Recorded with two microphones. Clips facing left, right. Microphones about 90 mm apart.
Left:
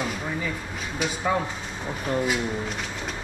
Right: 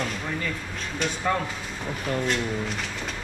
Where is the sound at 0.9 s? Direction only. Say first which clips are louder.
Left 1 dB; 10° left (ahead or behind).